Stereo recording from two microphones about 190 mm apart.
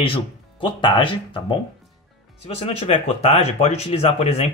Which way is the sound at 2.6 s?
30° left (ahead or behind).